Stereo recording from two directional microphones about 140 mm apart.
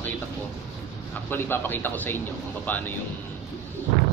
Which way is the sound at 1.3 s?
15° left (ahead or behind).